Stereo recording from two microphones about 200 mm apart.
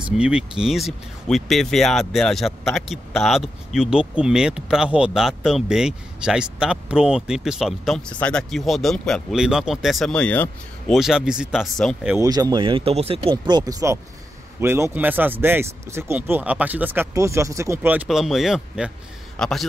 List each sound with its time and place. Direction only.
0.2 s speech: 5° right (ahead or behind)
12.2 s a man's voice: 20° right (ahead or behind); by 19.6 s 5° left (ahead or behind)